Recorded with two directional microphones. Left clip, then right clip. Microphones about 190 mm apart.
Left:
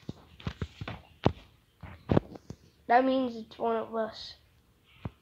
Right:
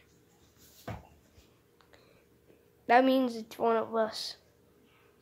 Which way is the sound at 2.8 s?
10° right (ahead or behind).